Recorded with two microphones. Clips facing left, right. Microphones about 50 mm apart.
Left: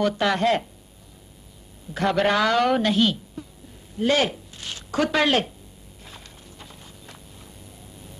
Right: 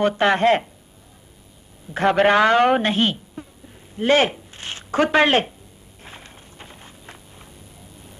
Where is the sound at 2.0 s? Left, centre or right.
Right.